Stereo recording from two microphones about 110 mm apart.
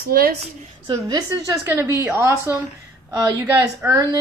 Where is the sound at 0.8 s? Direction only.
35° right (ahead or behind).